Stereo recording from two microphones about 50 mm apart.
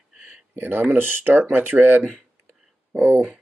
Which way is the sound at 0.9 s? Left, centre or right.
Right.